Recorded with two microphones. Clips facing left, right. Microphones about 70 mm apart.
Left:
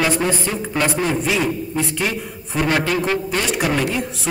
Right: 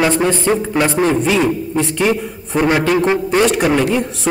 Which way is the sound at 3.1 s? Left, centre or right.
Right.